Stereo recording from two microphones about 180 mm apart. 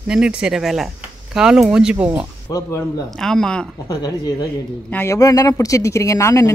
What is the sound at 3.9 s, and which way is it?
Speech, 20° left (ahead or behind).